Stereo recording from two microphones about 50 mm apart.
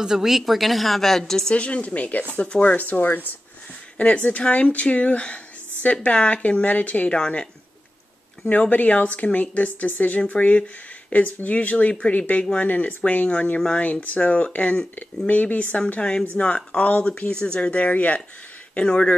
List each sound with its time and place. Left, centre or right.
0.0 s a woman's voice: centre
1.5 s speech: left
4.0 s speech: left
8.5 s speech: left
16.0 s speech: centre